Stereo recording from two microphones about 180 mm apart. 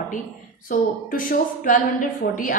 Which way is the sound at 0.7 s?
45° left (ahead or behind).